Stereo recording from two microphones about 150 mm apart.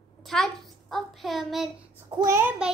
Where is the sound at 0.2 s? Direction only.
Centre (ahead or behind).